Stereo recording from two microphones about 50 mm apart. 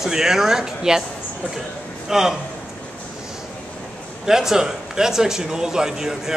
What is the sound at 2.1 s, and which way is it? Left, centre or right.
Speech, centre.